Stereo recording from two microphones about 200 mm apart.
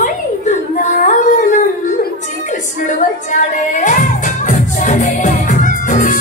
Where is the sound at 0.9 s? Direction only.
40° left (ahead or behind).